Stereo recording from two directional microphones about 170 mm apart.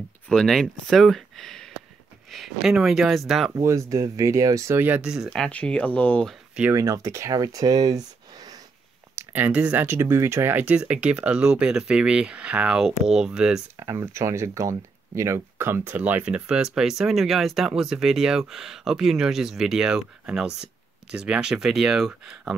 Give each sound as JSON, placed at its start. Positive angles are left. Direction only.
{"t": 0.3, "sound": "speech", "side_deg": 5}
{"t": 3.5, "sound": "speech", "side_deg": -15}
{"t": 6.7, "sound": "speech", "side_deg": -20}
{"t": 9.1, "sound": "speech", "side_deg": -15}
{"t": 13.7, "sound": "speech", "side_deg": -15}